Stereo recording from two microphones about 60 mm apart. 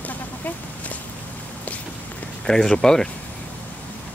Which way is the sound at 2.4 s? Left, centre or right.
Centre.